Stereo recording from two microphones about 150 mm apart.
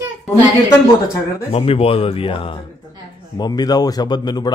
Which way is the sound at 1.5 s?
40° left (ahead or behind).